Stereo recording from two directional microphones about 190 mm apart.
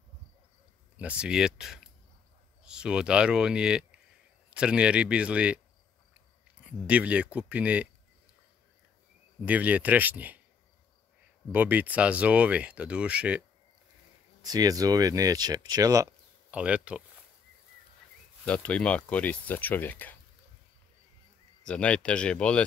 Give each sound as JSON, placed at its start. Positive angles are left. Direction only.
{"t": 0.9, "sound": "speech", "side_deg": -5}
{"t": 6.6, "sound": "speech", "side_deg": -5}
{"t": 9.4, "sound": "speech", "side_deg": -10}
{"t": 11.5, "sound": "speech", "side_deg": -10}
{"t": 14.4, "sound": "speech", "side_deg": -20}
{"t": 18.4, "sound": "speech", "side_deg": 5}
{"t": 21.6, "sound": "speech", "side_deg": 5}